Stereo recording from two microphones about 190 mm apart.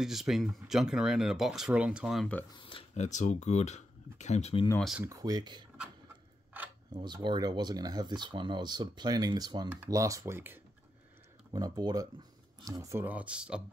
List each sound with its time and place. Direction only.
0.0 s speech: centre (ahead or behind)
2.5 s speech: 25° left (ahead or behind)
4.7 s speech: centre (ahead or behind)
5.0 s speech: 20° right (ahead or behind)
6.5 s a sound: 10° right (ahead or behind)
6.9 s speech: 25° right (ahead or behind); by 13.6 s 5° right (ahead or behind)